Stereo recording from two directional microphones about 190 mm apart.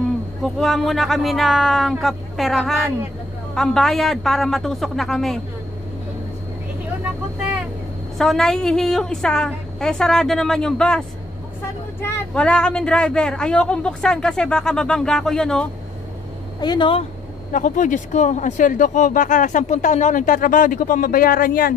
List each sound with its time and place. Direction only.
0.4 s speech: centre (ahead or behind)
8.2 s speech: centre (ahead or behind)
16.6 s speech: 25° left (ahead or behind)
17.5 s speech: 40° left (ahead or behind)